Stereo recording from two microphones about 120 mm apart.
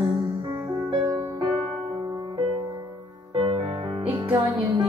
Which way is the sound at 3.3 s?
50° right (ahead or behind).